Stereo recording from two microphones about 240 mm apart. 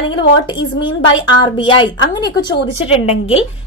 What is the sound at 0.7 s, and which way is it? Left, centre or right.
A woman's voice, centre.